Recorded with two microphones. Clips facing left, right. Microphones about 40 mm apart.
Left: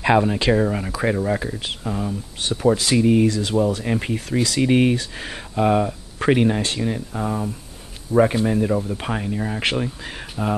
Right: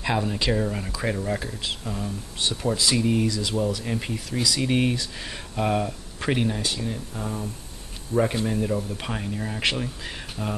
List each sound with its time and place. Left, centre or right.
0.0 s speech: left
2.7 s speech: left
3.0 s speech: centre
3.3 s speech: left; by 5.9 s centre
6.1 s speech: left
9.6 s speech: left